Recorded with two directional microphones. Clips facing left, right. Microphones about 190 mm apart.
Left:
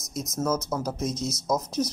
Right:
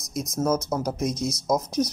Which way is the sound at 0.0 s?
15° right (ahead or behind).